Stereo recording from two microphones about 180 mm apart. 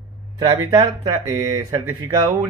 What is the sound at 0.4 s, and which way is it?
Speech, 20° right (ahead or behind).